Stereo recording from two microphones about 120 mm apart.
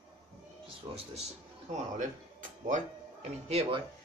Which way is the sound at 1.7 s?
90° right.